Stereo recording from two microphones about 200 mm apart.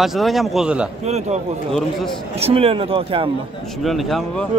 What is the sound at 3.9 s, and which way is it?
Speech, centre (ahead or behind).